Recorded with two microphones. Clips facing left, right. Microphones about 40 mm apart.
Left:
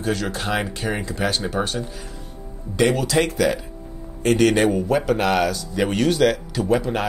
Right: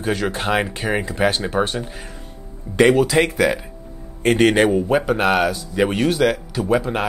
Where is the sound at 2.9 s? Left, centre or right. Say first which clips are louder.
Right 4 dB; centre.